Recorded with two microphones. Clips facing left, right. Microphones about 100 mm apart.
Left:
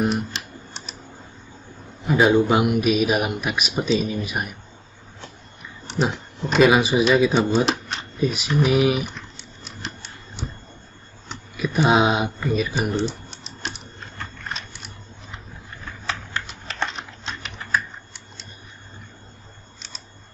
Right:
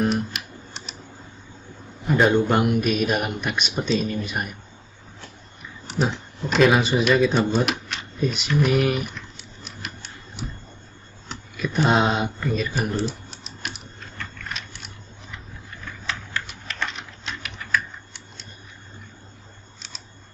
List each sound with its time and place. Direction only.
0.3 s typing: 30° left (ahead or behind)
2.0 s speech: 5° left (ahead or behind)
5.9 s a sound: centre (ahead or behind)
6.5 s speech: 5° left (ahead or behind)
7.6 s a sound: 35° left (ahead or behind)
8.2 s speech: 5° left (ahead or behind)
11.2 s speech: 5° left (ahead or behind)
16.1 s typing: 30° left (ahead or behind)